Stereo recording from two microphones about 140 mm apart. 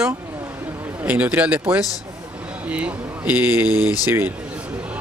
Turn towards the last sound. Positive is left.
turn(degrees=-15)  # may be behind; listen again after turning